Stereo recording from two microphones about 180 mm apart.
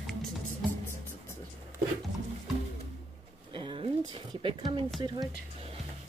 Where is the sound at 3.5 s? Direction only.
30° right (ahead or behind).